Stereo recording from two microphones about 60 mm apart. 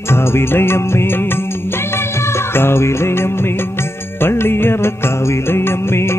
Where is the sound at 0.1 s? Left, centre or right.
Left.